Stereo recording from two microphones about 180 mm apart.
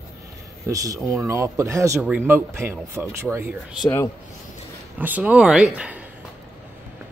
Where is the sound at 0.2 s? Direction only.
20° right (ahead or behind).